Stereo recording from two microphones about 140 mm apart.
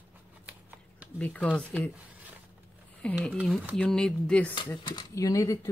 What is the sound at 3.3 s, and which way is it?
Speech, 10° right (ahead or behind).